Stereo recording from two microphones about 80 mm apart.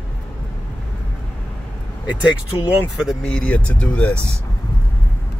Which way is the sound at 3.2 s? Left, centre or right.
Centre.